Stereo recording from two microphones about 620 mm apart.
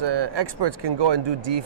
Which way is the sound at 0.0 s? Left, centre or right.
Right.